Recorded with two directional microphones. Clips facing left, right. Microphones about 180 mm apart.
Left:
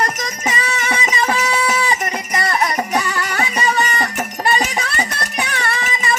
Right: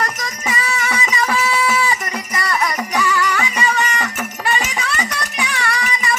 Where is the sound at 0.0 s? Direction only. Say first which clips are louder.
Left 3 dB; 25° left (ahead or behind).